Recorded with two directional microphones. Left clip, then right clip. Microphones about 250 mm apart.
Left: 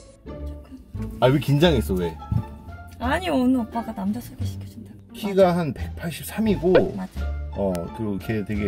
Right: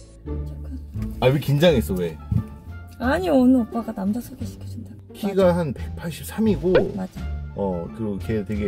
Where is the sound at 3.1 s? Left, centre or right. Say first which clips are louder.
Right 4 dB; centre.